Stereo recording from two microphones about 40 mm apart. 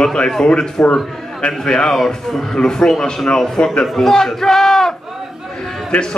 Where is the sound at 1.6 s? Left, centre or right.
Centre.